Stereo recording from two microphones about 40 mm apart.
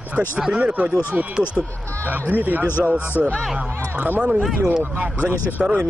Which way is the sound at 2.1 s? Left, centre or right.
Right.